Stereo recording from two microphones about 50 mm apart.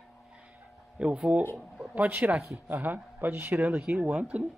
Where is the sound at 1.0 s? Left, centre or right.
Centre; by 3.6 s right.